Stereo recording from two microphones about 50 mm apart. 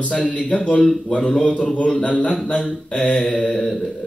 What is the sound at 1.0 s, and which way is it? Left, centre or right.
A man's voice, left.